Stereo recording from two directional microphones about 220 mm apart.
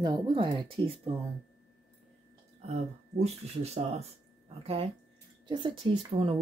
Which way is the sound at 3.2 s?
30° right (ahead or behind).